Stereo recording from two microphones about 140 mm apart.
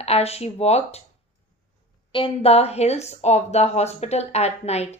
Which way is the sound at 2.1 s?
40° left (ahead or behind).